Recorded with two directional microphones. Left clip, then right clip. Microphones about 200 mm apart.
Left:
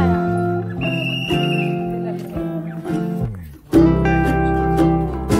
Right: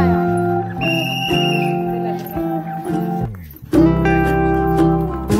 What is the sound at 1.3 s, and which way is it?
Music, centre (ahead or behind).